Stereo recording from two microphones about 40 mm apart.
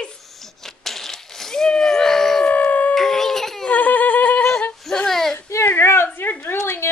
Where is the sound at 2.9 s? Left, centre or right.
Centre.